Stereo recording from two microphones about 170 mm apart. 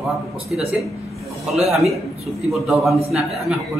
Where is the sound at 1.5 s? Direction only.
Centre (ahead or behind).